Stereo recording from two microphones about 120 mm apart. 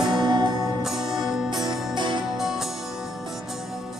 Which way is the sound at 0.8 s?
5° right (ahead or behind).